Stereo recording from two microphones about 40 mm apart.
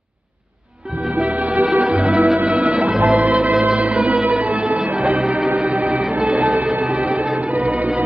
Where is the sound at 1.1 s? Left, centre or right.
Right.